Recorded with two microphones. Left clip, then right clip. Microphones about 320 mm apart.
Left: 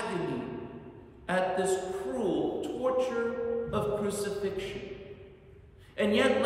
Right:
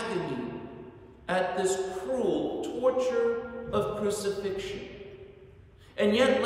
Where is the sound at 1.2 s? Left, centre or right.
Centre.